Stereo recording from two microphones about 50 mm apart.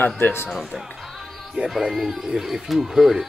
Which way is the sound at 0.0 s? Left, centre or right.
Left.